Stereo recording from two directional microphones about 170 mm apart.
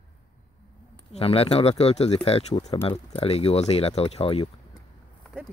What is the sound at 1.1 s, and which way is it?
Speech, 35° left (ahead or behind).